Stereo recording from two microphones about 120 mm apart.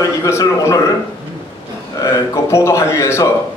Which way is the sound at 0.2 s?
25° left (ahead or behind).